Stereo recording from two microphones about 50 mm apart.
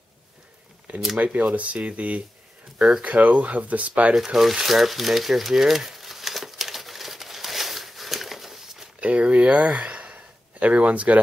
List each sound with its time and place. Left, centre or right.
1.1 s speech: right
4.1 s a sound: centre
9.0 s speech: right